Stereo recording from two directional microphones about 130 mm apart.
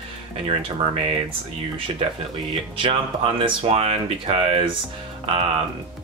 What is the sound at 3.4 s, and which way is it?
Speech, 50° right (ahead or behind).